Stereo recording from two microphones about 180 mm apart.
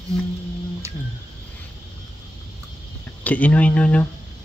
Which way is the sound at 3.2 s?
10° left (ahead or behind).